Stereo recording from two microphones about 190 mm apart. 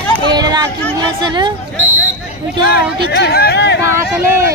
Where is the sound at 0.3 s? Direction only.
20° right (ahead or behind).